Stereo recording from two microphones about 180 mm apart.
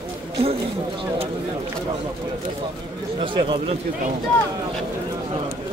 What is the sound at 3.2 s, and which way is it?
Speech, 30° right (ahead or behind).